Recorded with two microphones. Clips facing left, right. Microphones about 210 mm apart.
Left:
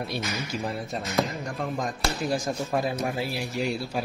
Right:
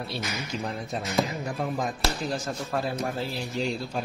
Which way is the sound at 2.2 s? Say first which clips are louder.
Left 3 dB; 15° left (ahead or behind).